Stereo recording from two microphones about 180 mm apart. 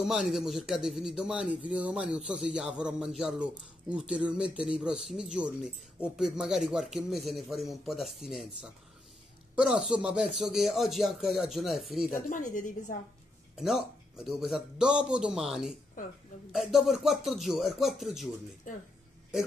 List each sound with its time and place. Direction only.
0.0 s a man's voice: centre (ahead or behind)
9.6 s a man's voice: 5° right (ahead or behind)
12.1 s speech: 45° left (ahead or behind)
13.6 s a man's voice: centre (ahead or behind)